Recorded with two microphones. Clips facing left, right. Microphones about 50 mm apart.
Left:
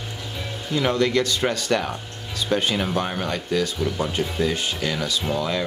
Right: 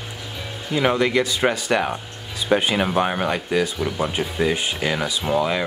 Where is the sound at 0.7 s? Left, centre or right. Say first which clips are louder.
Right 2 dB; centre.